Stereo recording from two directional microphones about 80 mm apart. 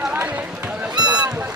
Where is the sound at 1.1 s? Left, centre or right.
Centre.